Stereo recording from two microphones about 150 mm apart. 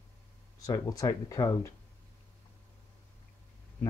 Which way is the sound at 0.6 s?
25° left (ahead or behind).